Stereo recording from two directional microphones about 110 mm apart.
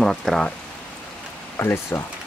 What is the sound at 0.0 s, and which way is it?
Speech, centre (ahead or behind).